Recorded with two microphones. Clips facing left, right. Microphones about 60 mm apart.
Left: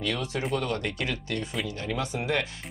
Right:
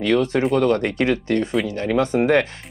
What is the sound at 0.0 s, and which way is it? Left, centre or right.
Speech, right.